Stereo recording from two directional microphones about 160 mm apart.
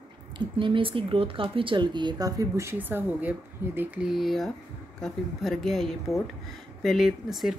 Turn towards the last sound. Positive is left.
turn(degrees=0)  # may be behind; listen again after turning